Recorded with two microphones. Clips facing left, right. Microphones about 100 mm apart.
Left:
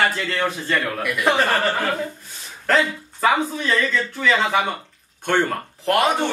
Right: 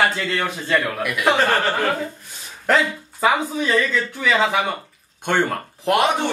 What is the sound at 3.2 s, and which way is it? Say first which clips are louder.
Speech: even; 10° right (ahead or behind).